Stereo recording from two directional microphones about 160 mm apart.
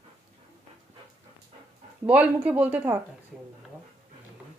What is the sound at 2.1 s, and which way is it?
Speech, 10° right (ahead or behind).